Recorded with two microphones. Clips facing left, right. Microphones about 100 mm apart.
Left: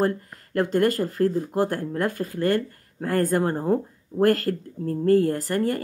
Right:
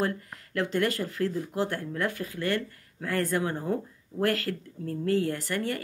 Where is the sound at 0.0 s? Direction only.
40° left (ahead or behind).